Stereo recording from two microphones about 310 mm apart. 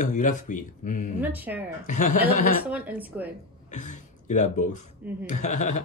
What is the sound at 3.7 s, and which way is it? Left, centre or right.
Speech, left.